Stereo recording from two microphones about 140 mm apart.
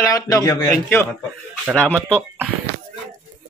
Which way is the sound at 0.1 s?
25° left (ahead or behind).